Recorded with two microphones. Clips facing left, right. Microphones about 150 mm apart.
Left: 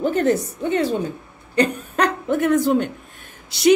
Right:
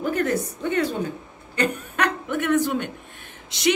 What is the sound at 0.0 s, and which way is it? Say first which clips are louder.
A woman's voice: left 5 dB; 25° left (ahead or behind).